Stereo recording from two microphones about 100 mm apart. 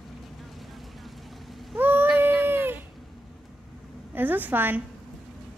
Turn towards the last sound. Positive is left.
turn(degrees=-20)  # may be behind; listen again after turning